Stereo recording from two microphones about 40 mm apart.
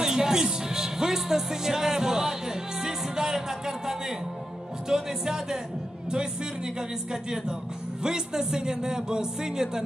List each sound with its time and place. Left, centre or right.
0.0 s speech: centre
2.8 s music: centre
4.8 s speech: centre
7.1 s speech: centre